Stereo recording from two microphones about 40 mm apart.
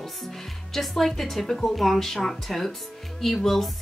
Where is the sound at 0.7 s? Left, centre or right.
Centre.